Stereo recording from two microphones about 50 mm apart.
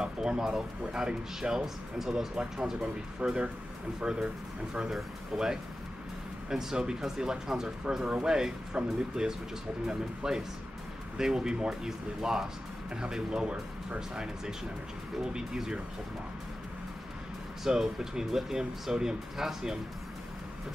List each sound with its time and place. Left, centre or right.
0.0 s speech: centre
17.6 s speech: centre